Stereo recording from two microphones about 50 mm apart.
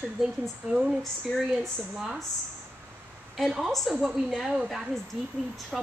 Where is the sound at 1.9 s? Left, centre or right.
Centre.